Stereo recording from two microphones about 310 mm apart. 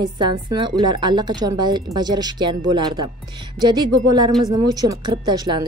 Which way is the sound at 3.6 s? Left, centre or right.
Centre.